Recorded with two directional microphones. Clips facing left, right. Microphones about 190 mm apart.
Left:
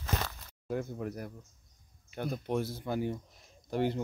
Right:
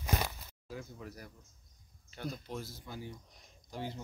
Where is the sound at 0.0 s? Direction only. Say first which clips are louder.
Right 1 dB; 15° right (ahead or behind).